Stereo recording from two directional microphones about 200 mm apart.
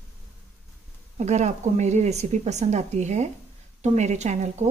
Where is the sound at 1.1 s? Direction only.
35° right (ahead or behind).